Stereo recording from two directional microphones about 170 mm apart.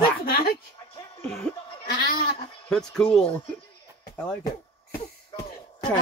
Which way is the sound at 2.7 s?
5° left (ahead or behind).